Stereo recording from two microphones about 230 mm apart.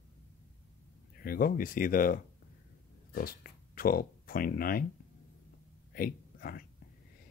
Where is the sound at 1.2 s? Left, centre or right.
Left.